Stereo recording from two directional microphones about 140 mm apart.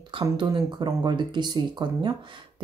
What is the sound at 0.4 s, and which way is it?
Speech, 35° right (ahead or behind).